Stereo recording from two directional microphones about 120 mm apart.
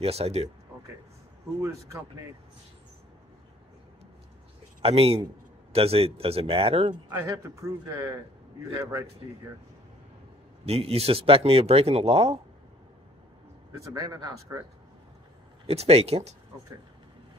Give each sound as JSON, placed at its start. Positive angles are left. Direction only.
{"t": 0.0, "sound": "speech", "side_deg": -55}
{"t": 1.6, "sound": "speech", "side_deg": -25}
{"t": 4.8, "sound": "speech", "side_deg": -55}
{"t": 7.2, "sound": "speech", "side_deg": -25}
{"t": 10.6, "sound": "speech", "side_deg": -60}
{"t": 13.7, "sound": "speech", "side_deg": -25}
{"t": 15.6, "sound": "speech", "side_deg": -60}